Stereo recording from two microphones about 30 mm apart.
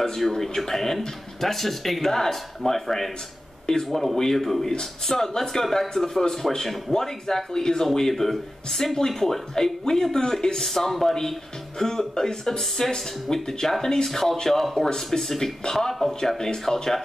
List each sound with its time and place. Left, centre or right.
0.2 s speech: centre